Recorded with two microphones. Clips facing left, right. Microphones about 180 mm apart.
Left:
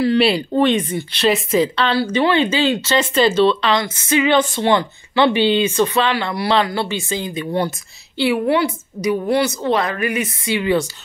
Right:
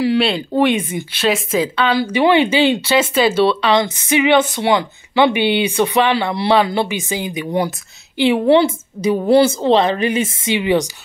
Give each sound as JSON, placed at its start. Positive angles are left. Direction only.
{"t": 0.4, "sound": "a woman's voice", "side_deg": -10}
{"t": 8.2, "sound": "a woman's voice", "side_deg": -25}